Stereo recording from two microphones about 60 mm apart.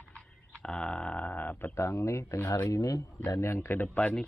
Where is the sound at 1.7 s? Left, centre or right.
Left.